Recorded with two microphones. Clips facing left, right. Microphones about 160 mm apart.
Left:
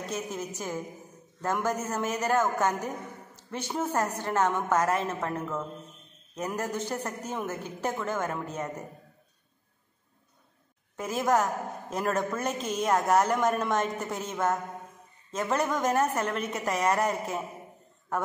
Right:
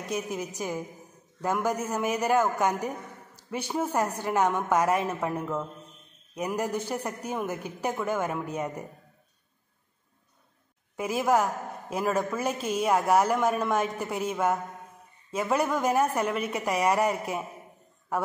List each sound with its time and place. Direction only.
0.0 s a man's voice: 10° right (ahead or behind)
11.0 s a man's voice: 10° right (ahead or behind)